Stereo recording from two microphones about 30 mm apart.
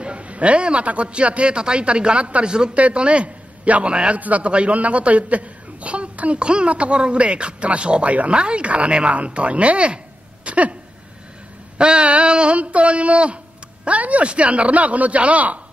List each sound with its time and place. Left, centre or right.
0.0 s a sound: right
1.0 s a man's voice: right
2.4 s speech: right
2.7 s a man's voice: right
4.2 s a woman's voice: right
4.5 s a man's voice: right
6.4 s a man's voice: right
6.7 s a man's voice: right
10.4 s a sound: right
11.8 s a man's voice: right
13.8 s a woman's voice: right
14.3 s speech: right